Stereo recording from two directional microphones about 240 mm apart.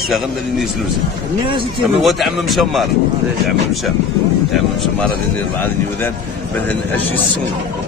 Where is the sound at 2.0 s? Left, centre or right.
Centre.